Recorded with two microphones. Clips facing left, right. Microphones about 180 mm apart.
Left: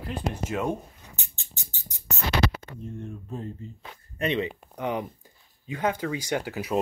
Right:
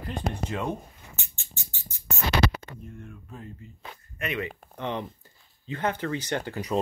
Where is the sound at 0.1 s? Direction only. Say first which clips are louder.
Left 1 dB; 5° left (ahead or behind).